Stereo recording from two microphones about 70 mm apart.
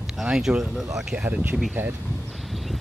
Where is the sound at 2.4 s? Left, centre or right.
Centre.